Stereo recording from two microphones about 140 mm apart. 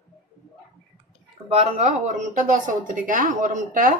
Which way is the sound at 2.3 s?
75° right (ahead or behind).